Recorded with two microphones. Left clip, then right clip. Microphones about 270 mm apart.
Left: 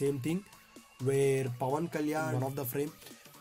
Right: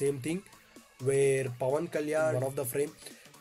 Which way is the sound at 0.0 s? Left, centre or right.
Left.